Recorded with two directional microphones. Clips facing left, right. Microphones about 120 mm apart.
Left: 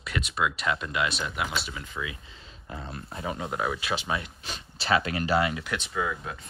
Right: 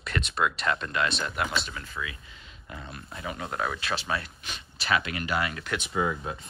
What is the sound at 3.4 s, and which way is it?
Speech, 15° left (ahead or behind).